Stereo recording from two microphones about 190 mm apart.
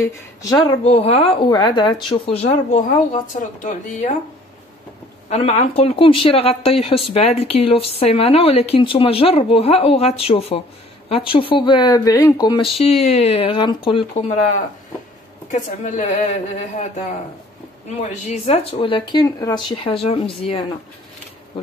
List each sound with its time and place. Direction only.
0.0 s speech: 15° left (ahead or behind)
0.8 s speech: 35° left (ahead or behind)
5.3 s speech: 35° left (ahead or behind); by 12.6 s 20° left (ahead or behind)
12.7 s speech: 30° left (ahead or behind)
15.5 s speech: 40° left (ahead or behind)